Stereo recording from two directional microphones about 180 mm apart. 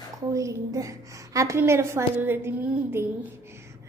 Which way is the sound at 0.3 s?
20° right (ahead or behind).